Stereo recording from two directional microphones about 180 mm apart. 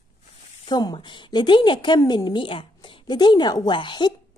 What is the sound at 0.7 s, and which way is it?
A woman's voice, 20° left (ahead or behind).